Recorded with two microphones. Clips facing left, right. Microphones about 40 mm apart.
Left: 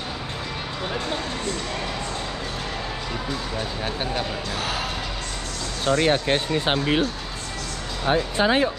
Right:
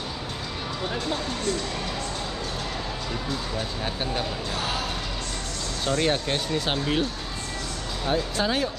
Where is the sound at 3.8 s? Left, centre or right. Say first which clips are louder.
Left 2 dB; centre.